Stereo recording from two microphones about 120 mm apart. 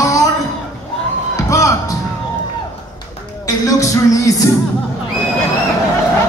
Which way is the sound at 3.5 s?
30° left (ahead or behind).